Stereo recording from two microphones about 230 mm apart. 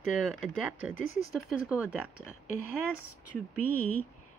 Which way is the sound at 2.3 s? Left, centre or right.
Left.